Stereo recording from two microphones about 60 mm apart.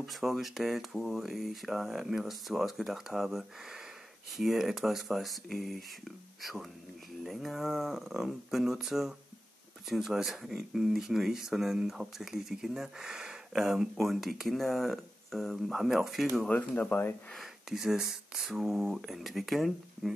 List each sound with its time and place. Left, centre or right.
0.0 s speech: centre
16.4 s speech: left
17.4 s speech: centre